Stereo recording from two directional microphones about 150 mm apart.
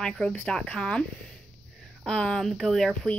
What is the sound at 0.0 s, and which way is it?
Speech, 5° left (ahead or behind).